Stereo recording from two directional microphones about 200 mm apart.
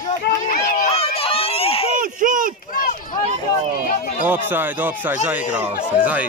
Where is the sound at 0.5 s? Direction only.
40° left (ahead or behind).